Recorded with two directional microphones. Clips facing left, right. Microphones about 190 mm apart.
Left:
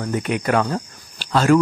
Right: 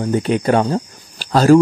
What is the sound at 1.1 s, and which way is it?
Cricket, 35° right (ahead or behind).